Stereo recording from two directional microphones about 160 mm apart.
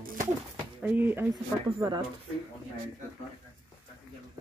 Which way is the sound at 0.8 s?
10° right (ahead or behind).